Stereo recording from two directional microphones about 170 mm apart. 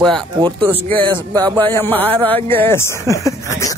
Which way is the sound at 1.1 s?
25° right (ahead or behind).